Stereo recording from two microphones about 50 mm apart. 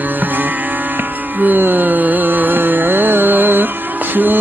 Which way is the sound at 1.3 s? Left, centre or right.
Right.